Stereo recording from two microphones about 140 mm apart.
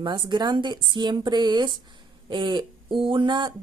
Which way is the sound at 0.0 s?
30° right (ahead or behind).